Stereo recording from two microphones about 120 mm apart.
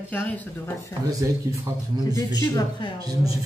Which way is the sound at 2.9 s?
35° right (ahead or behind).